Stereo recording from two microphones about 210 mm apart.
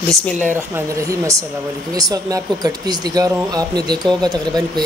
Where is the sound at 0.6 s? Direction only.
15° right (ahead or behind).